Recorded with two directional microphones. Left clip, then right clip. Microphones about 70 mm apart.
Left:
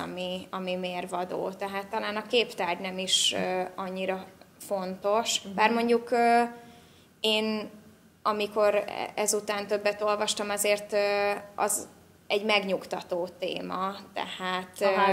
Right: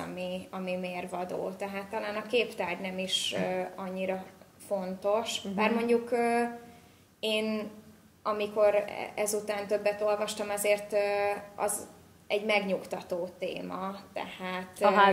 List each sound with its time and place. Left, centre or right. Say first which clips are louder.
0.0 s speech: left 3 dB; left